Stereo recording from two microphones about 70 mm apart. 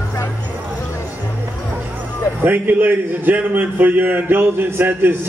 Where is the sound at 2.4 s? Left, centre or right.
Right.